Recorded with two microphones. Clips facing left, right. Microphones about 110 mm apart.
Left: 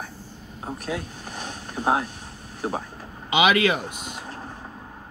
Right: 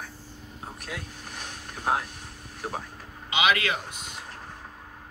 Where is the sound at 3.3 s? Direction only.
10° left (ahead or behind).